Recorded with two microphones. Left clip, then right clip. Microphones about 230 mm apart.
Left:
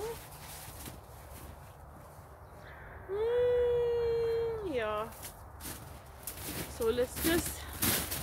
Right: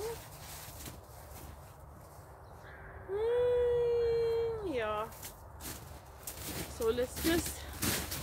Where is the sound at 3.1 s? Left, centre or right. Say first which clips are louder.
Left 1 dB; centre.